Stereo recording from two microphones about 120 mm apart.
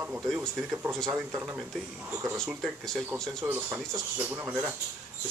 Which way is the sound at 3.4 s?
20° right (ahead or behind).